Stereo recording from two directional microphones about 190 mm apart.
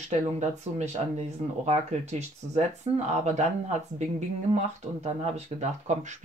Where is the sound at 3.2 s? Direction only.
40° right (ahead or behind).